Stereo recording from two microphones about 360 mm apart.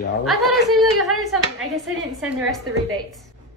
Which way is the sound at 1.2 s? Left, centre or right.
Centre.